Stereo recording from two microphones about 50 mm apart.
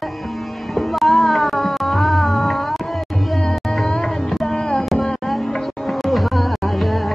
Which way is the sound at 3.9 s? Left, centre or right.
Centre.